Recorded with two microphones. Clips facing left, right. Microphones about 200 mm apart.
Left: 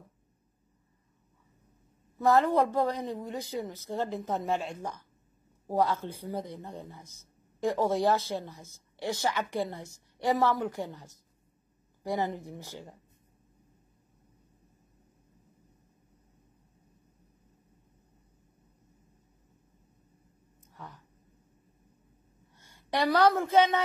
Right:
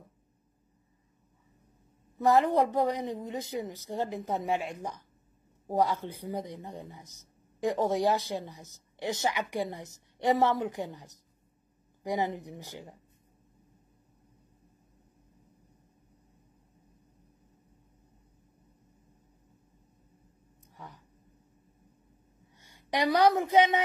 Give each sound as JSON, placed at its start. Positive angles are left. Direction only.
{"t": 2.1, "sound": "speech", "side_deg": -15}
{"t": 20.7, "sound": "a sound", "side_deg": -15}
{"t": 22.6, "sound": "a woman's voice", "side_deg": -15}